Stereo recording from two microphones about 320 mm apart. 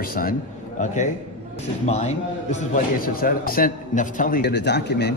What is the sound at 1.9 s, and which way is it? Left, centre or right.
A man's voice, left.